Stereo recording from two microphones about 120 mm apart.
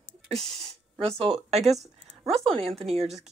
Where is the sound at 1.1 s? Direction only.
55° right (ahead or behind).